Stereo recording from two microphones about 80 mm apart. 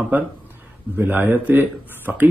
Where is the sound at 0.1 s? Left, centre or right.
Right.